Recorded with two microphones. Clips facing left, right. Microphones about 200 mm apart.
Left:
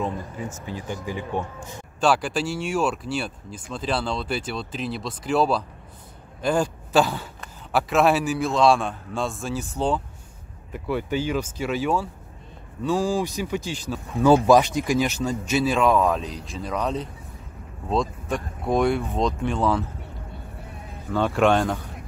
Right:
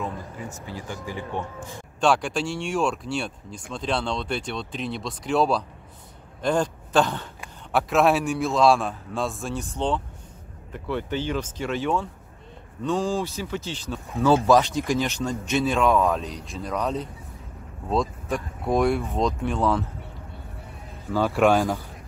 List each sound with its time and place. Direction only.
0.7 s speech: 20° left (ahead or behind)
2.0 s a man's voice: 5° left (ahead or behind)
21.1 s speech: 5° right (ahead or behind)